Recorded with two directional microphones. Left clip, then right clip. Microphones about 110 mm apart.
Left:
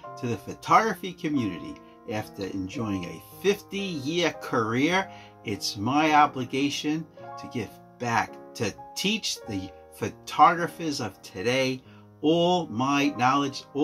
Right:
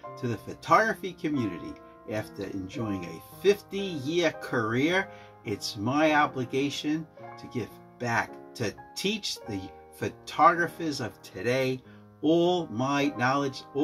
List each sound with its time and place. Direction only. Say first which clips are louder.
0.2 s speech: left 3 dB; 20° left (ahead or behind)